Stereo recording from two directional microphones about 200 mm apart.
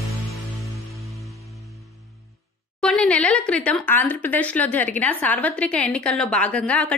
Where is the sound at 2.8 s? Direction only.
5° left (ahead or behind).